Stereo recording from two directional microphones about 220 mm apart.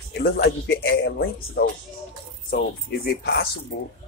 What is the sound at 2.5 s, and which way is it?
Speech, 45° left (ahead or behind).